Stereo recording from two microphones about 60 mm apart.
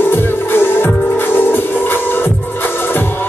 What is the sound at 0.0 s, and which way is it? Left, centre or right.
Music, left.